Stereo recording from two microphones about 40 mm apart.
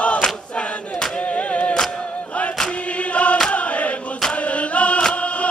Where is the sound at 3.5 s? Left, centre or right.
Left.